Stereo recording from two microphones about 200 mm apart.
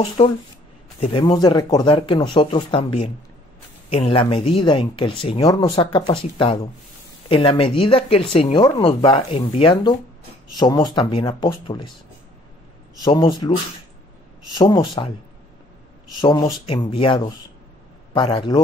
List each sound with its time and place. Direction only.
0.2 s speech: 30° left (ahead or behind)
13.0 s speech: 25° left (ahead or behind)
14.5 s speech: 20° left (ahead or behind)
16.2 s speech: 20° left (ahead or behind)